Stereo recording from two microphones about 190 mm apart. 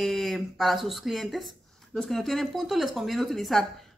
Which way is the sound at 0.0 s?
Centre (ahead or behind).